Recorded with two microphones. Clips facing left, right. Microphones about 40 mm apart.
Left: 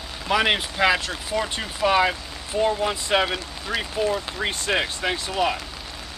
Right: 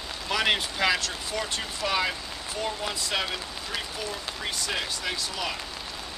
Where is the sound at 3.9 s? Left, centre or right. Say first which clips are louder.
Left 10 dB; left.